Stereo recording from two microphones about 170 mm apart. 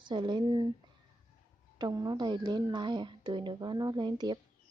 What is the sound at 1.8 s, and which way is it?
Speech, 25° right (ahead or behind).